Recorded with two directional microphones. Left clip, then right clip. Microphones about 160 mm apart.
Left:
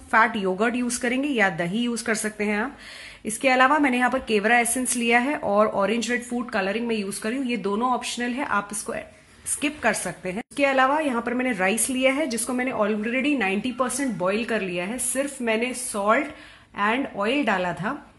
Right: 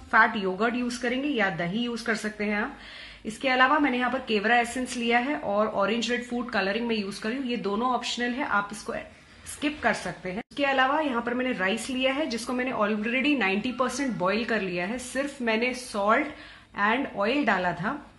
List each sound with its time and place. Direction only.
0.1 s speech: 30° left (ahead or behind)
5.9 s speech: 30° left (ahead or behind)